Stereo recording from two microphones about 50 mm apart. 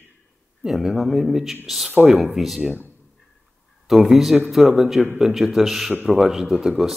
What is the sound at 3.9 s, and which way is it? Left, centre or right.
Speech, centre.